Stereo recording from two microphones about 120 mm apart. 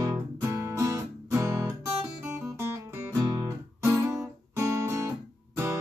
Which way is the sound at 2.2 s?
10° right (ahead or behind).